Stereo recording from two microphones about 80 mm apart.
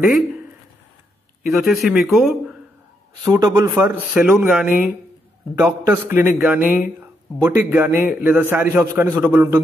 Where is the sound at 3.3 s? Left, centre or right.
Right.